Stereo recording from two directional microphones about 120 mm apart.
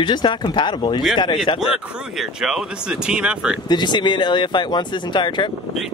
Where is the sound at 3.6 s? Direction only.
40° left (ahead or behind).